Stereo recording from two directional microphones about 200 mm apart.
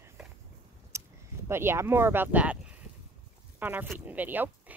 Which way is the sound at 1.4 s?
10° right (ahead or behind).